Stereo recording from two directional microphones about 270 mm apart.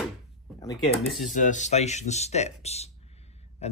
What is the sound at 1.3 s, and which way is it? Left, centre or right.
Speech, left.